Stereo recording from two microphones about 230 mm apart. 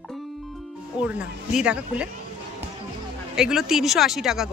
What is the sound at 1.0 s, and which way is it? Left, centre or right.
Speech, centre.